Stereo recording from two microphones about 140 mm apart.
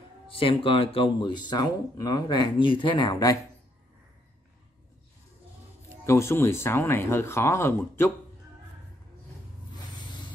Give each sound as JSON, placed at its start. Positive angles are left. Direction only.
{"t": 0.3, "sound": "speech", "side_deg": 40}
{"t": 6.0, "sound": "speech", "side_deg": 20}
{"t": 9.9, "sound": "rub", "side_deg": 30}